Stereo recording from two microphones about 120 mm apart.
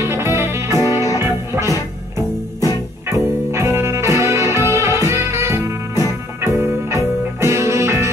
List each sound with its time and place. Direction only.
0.0 s music: 20° right (ahead or behind)
3.1 s music: 20° right (ahead or behind)